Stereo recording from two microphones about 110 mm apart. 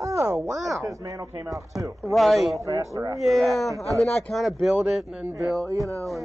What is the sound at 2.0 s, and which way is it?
Speech, centre (ahead or behind).